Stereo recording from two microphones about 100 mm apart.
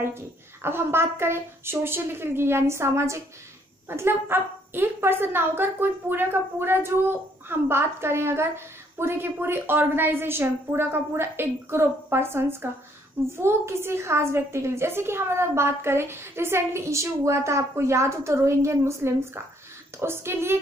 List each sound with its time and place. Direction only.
0.0 s a woman's voice: 25° right (ahead or behind)